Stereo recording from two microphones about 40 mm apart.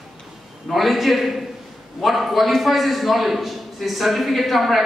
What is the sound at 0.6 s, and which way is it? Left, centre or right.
A man's voice, centre.